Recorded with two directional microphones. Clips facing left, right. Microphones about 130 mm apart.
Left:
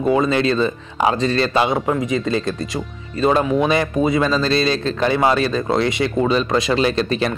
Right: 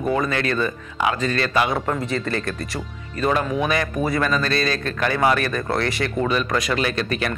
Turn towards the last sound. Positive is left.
turn(degrees=30)  # may be behind; listen again after turning